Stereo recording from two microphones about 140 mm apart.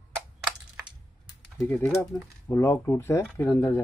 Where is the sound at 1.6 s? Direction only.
10° left (ahead or behind).